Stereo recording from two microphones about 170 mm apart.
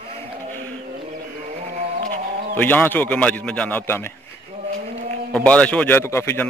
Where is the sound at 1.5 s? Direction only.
40° right (ahead or behind).